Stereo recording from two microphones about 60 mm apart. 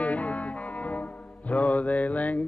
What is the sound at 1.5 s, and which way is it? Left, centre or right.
Music, left.